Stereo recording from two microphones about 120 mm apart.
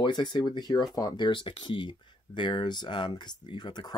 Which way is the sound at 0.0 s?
40° left (ahead or behind).